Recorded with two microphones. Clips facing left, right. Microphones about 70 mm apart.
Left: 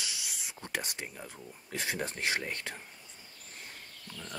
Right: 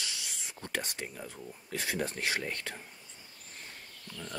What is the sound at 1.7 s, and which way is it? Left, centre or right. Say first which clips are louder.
Speech: right 1 dB; left.